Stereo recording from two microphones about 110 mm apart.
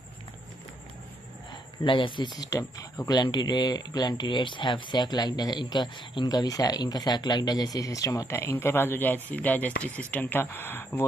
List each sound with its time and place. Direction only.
1.5 s speech: 45° left (ahead or behind)
2.5 s speech: 30° left (ahead or behind)